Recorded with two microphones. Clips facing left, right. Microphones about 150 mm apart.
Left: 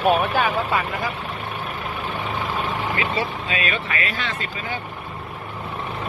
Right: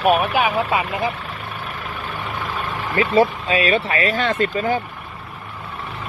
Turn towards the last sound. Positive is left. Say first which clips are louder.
# right 10 dB
turn(degrees=-45)  # may be behind; listen again after turning